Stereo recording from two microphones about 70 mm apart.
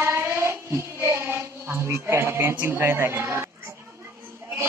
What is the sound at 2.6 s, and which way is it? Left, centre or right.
Speech, right.